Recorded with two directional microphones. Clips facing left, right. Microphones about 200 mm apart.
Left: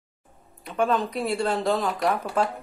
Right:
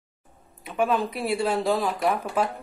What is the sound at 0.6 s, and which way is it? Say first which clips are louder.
Speech: even; 5° right (ahead or behind).